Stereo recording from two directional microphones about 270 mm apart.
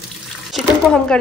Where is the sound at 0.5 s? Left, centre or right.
Centre.